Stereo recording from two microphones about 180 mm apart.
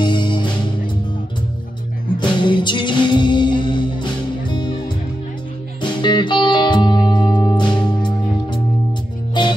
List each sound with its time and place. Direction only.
0.0 s music: 25° left (ahead or behind)
2.1 s music: 25° left (ahead or behind)
9.4 s music: 25° left (ahead or behind)